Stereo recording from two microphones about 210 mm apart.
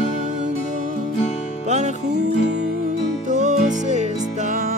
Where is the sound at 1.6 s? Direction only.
35° right (ahead or behind).